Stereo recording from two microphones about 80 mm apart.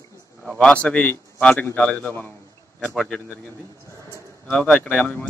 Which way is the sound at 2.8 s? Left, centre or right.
Centre.